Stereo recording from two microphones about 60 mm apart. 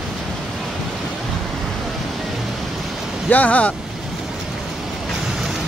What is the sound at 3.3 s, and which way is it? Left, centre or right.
Speech, left.